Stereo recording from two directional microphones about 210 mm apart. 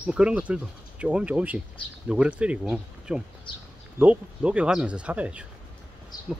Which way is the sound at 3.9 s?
5° right (ahead or behind).